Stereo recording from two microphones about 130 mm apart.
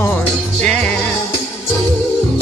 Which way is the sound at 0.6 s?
10° left (ahead or behind).